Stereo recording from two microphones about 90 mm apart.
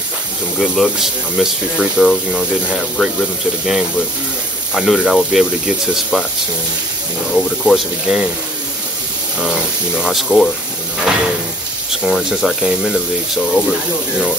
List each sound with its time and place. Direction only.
0.6 s speech: centre (ahead or behind)
4.7 s speech: centre (ahead or behind)
7.3 s speech: 5° right (ahead or behind)
9.4 s speech: 5° right (ahead or behind)